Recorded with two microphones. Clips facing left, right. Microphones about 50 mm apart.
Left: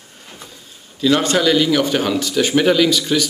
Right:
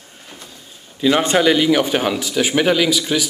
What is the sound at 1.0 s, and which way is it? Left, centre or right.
Speech, centre.